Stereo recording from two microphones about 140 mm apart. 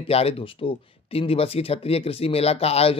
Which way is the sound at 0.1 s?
45° left (ahead or behind).